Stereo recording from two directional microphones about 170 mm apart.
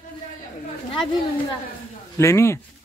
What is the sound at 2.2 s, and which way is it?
Speech, 15° left (ahead or behind).